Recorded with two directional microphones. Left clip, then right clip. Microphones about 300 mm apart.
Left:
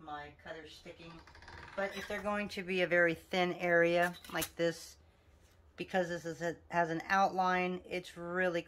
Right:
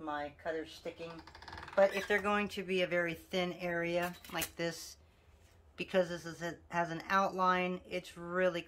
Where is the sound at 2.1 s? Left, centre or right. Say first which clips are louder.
Right 5 dB; centre.